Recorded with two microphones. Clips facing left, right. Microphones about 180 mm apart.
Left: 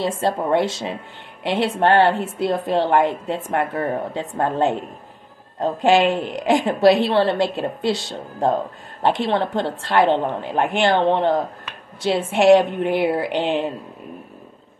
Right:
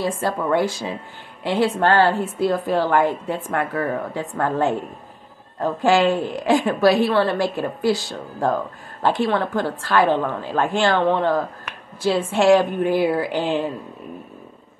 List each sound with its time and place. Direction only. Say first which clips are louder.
0.2 s a woman's voice: left 2 dB; 25° left (ahead or behind)